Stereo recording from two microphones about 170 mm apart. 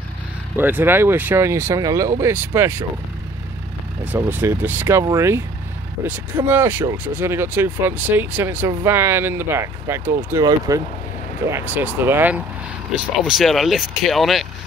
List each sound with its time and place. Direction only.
0.6 s speech: 10° right (ahead or behind)
4.0 s speech: 10° right (ahead or behind)